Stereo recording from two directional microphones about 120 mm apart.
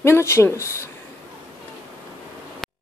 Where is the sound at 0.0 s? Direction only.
25° left (ahead or behind).